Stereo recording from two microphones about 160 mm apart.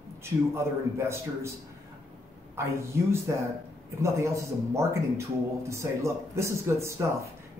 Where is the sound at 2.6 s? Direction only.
15° right (ahead or behind).